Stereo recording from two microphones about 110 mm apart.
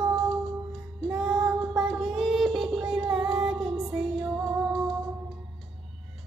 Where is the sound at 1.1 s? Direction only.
Centre (ahead or behind).